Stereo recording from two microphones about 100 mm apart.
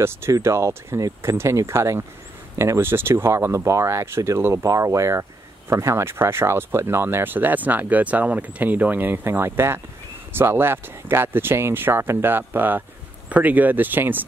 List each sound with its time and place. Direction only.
0.0 s speech: 25° right (ahead or behind)